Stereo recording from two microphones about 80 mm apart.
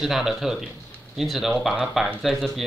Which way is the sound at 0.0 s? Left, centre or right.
Centre.